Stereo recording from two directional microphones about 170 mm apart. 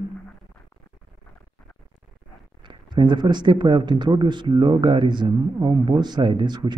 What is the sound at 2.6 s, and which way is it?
Speech, 25° right (ahead or behind).